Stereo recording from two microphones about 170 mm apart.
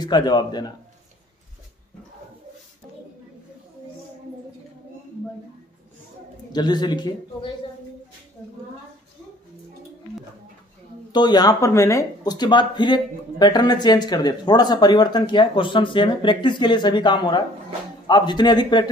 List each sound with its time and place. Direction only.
0.0 s speech: 25° left (ahead or behind)
6.5 s speech: 25° left (ahead or behind)
11.1 s speech: 25° left (ahead or behind)